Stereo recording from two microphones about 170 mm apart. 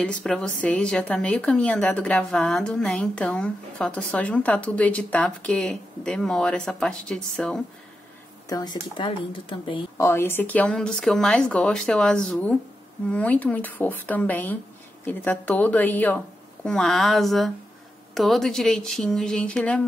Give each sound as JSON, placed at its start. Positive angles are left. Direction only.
{"t": 0.0, "sound": "speech", "side_deg": 5}
{"t": 8.5, "sound": "speech", "side_deg": 25}
{"t": 9.9, "sound": "speech", "side_deg": 15}